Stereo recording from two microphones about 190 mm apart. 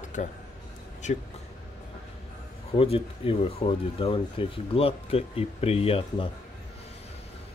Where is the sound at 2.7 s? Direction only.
30° left (ahead or behind).